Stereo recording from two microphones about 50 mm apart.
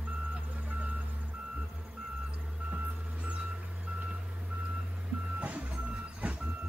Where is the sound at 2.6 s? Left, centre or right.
Right.